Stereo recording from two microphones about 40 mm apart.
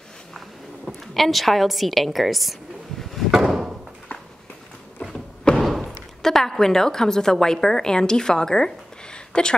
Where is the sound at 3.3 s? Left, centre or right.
Centre.